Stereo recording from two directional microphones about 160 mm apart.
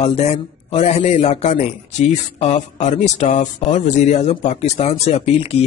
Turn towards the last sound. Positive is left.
turn(degrees=40)  # may be behind; listen again after turning